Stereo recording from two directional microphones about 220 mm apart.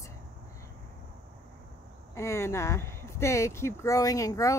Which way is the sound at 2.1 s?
10° left (ahead or behind).